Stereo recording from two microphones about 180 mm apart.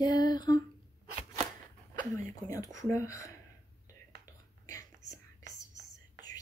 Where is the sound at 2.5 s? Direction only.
20° left (ahead or behind).